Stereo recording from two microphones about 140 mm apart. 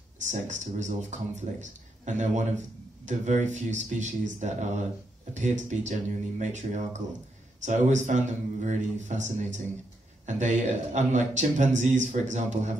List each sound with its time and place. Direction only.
0.2 s a man's voice: 60° right (ahead or behind)